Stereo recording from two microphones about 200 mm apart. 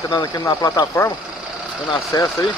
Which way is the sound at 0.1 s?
20° left (ahead or behind).